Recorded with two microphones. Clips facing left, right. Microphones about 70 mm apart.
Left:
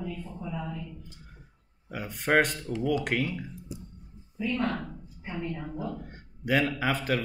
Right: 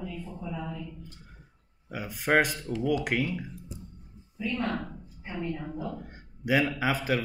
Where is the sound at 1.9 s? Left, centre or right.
Centre.